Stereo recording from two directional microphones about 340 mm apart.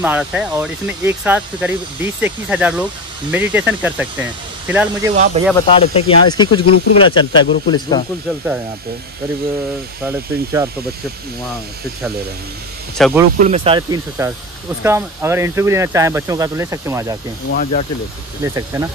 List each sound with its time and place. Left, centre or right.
0.0 s speech: centre
5.1 s speech: right
5.7 s speech: centre
10.0 s speech: centre
12.9 s speech: centre
13.4 s speech: centre
17.5 s speech: left
18.4 s speech: centre